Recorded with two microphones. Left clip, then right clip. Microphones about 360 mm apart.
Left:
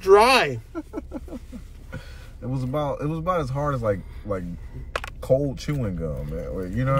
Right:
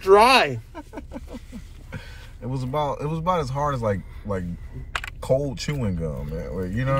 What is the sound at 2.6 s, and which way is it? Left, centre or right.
Speech, right.